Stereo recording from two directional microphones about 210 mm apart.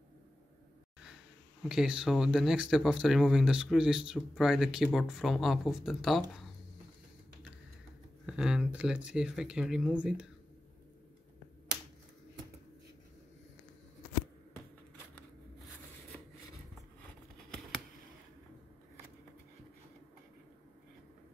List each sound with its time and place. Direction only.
1.6 s speech: 5° right (ahead or behind)
8.3 s speech: 5° right (ahead or behind)